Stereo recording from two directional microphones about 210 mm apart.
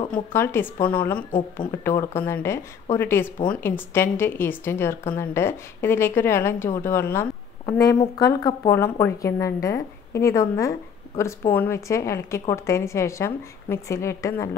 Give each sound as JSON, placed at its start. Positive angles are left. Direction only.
{"t": 0.1, "sound": "a woman's voice", "side_deg": 10}